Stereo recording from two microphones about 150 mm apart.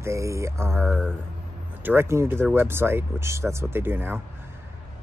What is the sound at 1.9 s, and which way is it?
Speech, 15° right (ahead or behind).